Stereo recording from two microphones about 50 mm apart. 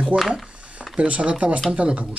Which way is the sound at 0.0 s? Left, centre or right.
Centre.